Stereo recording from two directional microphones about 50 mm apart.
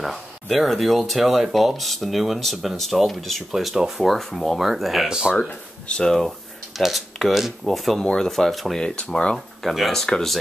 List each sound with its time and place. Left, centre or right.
0.0 s speech: centre
4.1 s speech: centre
5.9 s speech: centre
6.7 s speech: centre
8.7 s speech: centre
10.0 s speech: centre